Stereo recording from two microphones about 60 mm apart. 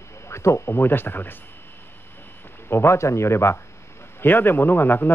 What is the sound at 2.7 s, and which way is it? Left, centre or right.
Speech, left.